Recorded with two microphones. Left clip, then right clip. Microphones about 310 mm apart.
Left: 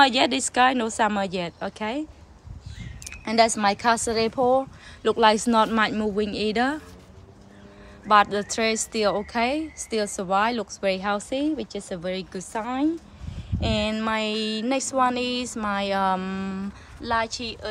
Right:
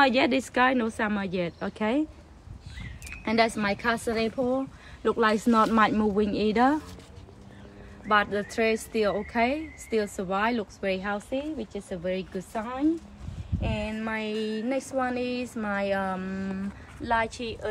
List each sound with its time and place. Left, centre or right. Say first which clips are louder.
0.0 s speech: left 3 dB; centre
3.1 s speech: left 4 dB; centre
8.1 s speech: left 6 dB; centre
13.9 s speech: left 5 dB; centre